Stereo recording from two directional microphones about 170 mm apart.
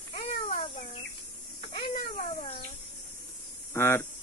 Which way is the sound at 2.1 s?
35° left (ahead or behind).